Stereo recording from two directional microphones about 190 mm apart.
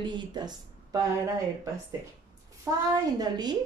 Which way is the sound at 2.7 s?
15° right (ahead or behind).